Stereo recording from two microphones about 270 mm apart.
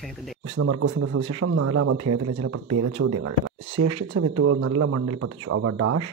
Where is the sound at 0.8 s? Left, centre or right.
Right.